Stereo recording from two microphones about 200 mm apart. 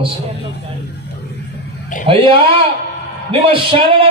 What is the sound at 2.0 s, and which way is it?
Speech, 25° right (ahead or behind).